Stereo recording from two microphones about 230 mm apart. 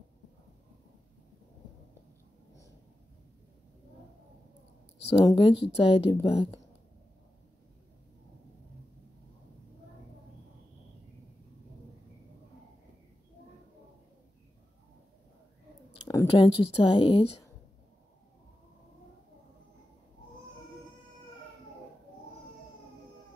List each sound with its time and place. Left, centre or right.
5.0 s a woman's voice: centre
16.3 s a woman's voice: left